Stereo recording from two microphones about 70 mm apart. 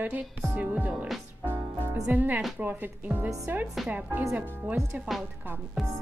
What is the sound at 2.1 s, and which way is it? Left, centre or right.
Speech, right.